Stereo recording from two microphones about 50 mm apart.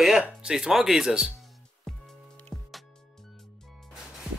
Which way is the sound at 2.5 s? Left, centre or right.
Centre.